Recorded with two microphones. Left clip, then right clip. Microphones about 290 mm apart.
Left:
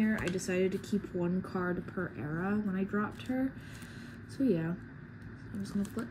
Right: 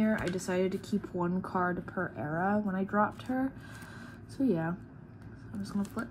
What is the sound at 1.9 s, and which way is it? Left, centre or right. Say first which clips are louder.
Speech: right 4 dB; right.